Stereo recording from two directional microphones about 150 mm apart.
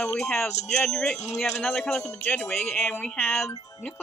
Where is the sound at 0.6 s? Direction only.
Centre (ahead or behind).